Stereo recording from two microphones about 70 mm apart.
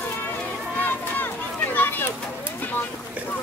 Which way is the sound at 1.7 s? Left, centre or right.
Left.